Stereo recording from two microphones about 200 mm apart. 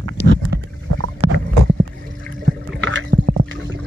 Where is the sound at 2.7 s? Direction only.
70° right (ahead or behind).